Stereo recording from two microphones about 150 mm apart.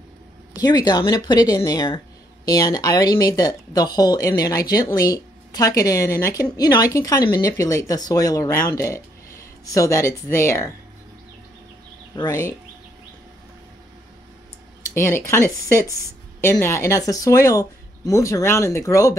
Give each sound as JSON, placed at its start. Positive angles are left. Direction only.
{"t": 0.6, "sound": "speech", "side_deg": 25}
{"t": 12.3, "sound": "speech", "side_deg": 15}
{"t": 15.0, "sound": "speech", "side_deg": 15}